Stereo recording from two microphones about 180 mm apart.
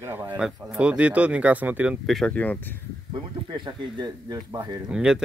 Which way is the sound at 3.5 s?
25° right (ahead or behind).